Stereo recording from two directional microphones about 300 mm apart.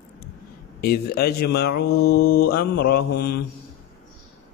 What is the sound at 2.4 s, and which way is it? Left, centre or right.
Mantra, left.